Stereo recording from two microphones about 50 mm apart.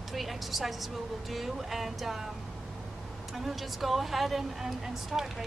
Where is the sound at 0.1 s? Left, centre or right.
Centre.